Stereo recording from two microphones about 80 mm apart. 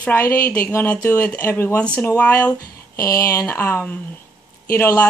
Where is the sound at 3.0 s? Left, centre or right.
Left.